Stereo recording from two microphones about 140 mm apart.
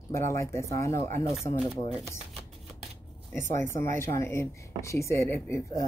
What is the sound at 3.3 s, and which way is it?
Speech, 15° left (ahead or behind).